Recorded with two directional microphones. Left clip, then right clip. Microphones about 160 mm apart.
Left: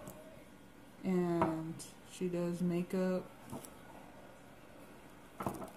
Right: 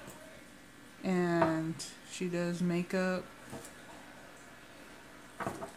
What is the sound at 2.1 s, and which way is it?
Speech, 45° right (ahead or behind).